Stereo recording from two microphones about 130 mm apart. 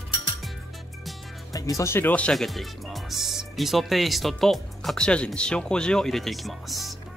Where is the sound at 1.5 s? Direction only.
25° left (ahead or behind); by 6.9 s centre (ahead or behind).